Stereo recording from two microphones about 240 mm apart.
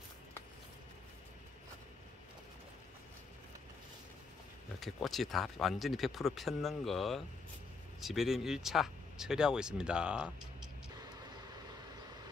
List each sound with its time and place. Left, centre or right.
4.7 s speech: centre